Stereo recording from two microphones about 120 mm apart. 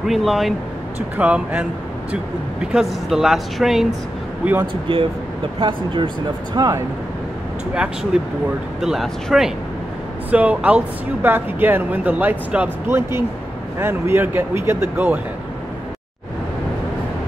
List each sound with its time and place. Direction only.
0.0 s speech: centre (ahead or behind)
1.1 s speech: 10° right (ahead or behind)
4.9 s speech: 45° right (ahead or behind)
7.7 s speech: 10° right (ahead or behind)